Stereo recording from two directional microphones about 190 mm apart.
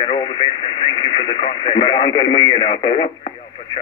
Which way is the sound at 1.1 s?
25° left (ahead or behind).